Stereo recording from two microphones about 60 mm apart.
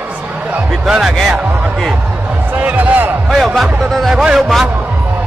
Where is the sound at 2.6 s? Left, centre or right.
Right.